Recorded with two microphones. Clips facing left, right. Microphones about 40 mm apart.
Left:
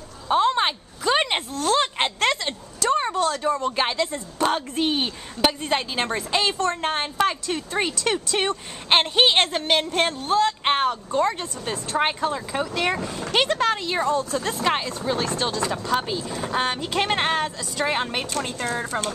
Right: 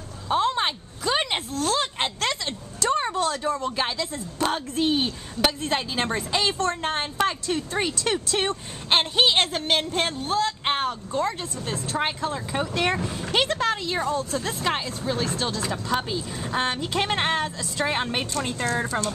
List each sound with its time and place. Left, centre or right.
0.3 s a sound: centre
2.8 s a sound: centre
3.7 s speech: left
4.4 s speech: centre
9.6 s speech: centre
12.5 s speech: centre
18.9 s speech: left